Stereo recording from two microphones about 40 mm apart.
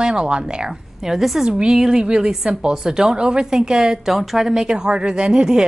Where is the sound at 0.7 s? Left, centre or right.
Centre.